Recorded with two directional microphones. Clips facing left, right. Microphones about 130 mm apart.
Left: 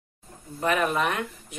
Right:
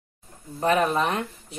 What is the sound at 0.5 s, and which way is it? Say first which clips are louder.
Speech: right 3 dB; 35° right (ahead or behind).